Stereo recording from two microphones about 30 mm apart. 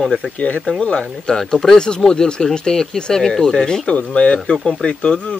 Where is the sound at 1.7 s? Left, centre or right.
Left.